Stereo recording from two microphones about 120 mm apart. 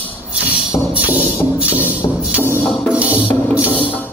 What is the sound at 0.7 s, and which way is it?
Music, 10° right (ahead or behind).